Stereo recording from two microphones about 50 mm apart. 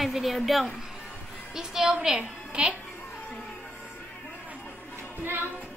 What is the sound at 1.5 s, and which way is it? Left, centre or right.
A woman's voice, centre.